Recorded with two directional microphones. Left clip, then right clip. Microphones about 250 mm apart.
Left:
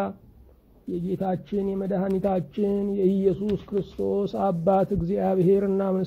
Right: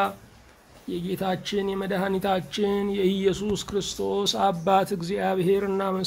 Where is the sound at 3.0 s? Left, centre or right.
Centre.